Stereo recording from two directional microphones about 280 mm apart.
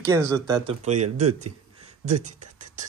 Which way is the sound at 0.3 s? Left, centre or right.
Centre.